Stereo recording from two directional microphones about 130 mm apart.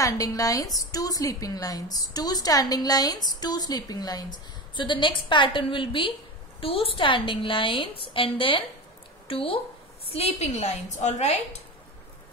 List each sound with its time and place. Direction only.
0.0 s a woman's voice: 25° left (ahead or behind); by 11.4 s 60° left (ahead or behind)